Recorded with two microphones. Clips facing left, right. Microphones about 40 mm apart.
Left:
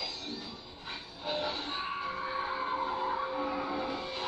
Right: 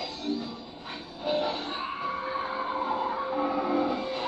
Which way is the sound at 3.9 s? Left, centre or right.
Right.